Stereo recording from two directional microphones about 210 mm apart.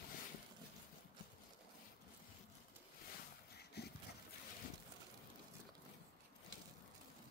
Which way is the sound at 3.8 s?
50° left (ahead or behind).